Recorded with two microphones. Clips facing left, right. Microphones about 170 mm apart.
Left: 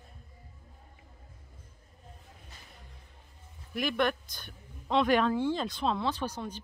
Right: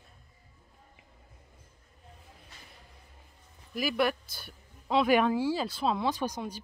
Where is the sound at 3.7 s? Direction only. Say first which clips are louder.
Right 1 dB; 5° right (ahead or behind).